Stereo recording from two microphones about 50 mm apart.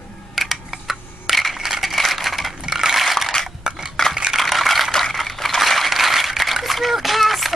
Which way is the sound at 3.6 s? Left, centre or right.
Centre.